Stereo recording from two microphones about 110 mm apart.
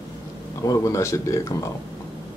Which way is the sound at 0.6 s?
30° left (ahead or behind).